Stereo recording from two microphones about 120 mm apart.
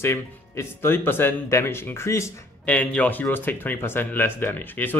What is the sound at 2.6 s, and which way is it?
Speech, 10° left (ahead or behind).